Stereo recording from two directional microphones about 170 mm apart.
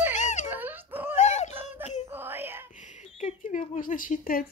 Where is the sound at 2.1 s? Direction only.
10° right (ahead or behind).